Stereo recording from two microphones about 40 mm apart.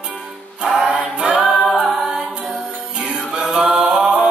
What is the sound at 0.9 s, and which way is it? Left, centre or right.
A capella, right.